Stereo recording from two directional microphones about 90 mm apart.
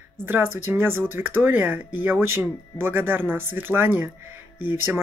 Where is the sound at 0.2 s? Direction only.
25° right (ahead or behind).